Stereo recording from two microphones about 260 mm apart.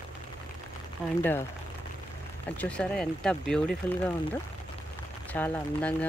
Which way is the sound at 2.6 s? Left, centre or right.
Centre.